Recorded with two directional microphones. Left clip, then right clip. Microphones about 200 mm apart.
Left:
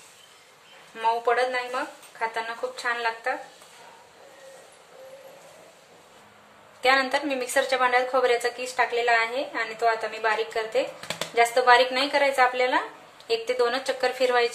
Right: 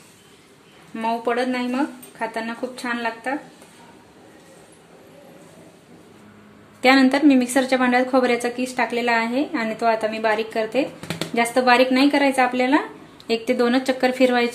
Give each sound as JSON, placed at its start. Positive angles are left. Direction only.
{"t": 1.0, "sound": "a woman's voice", "side_deg": -30}
{"t": 6.8, "sound": "a woman's voice", "side_deg": -40}